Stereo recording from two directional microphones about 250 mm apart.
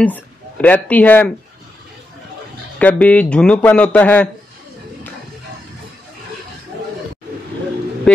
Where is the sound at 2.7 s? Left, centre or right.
Centre.